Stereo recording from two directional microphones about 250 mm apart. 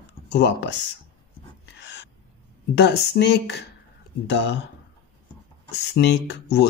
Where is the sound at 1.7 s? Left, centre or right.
Left.